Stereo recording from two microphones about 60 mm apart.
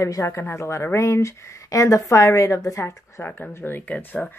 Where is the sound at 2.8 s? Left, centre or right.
Left.